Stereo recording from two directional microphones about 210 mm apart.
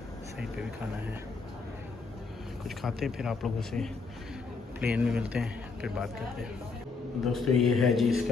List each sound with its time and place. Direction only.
2.8 s speech: centre (ahead or behind)
7.3 s speech: centre (ahead or behind)